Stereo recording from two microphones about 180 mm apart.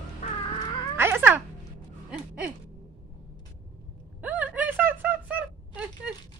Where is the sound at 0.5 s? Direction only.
25° left (ahead or behind).